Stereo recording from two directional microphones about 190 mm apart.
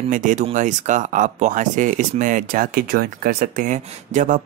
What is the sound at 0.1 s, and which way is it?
Speech, 40° right (ahead or behind).